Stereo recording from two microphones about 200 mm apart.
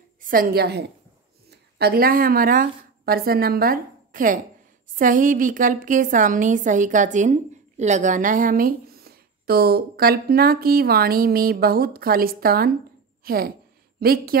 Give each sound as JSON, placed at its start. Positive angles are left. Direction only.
{"t": 0.2, "sound": "a woman's voice", "side_deg": -45}